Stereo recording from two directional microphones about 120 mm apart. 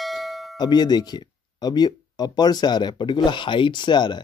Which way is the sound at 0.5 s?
35° left (ahead or behind).